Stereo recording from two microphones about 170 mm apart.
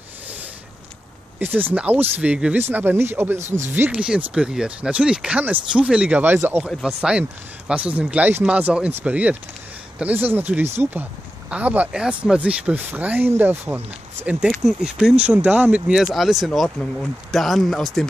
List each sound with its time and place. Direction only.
1.4 s speech: 10° right (ahead or behind)
3.3 s speech: 45° right (ahead or behind)
3.7 s speech: 10° right (ahead or behind)
6.7 s a man's voice: centre (ahead or behind)